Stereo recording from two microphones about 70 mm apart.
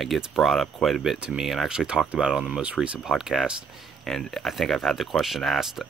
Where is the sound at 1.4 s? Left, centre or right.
Centre.